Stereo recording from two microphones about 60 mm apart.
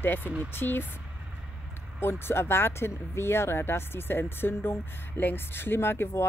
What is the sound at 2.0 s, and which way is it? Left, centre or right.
Speech, left.